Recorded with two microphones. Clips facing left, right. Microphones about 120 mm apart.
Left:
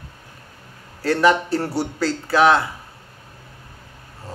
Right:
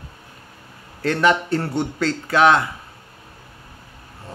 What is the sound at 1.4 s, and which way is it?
A man's voice, 5° left (ahead or behind).